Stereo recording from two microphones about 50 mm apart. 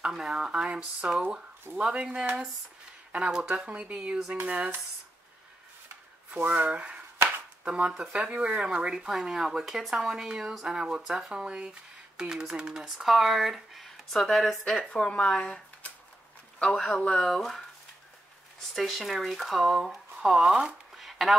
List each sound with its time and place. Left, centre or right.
0.0 s speech: centre; by 4.6 s right
6.3 s speech: right; by 14.6 s centre
14.8 s speech: left
16.6 s a man's voice: centre
20.5 s a sound: centre